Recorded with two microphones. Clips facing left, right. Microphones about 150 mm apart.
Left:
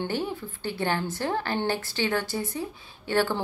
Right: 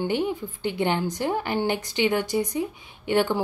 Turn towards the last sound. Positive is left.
turn(degrees=-15)  # may be behind; listen again after turning